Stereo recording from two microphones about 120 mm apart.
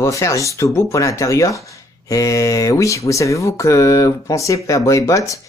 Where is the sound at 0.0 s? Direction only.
25° left (ahead or behind).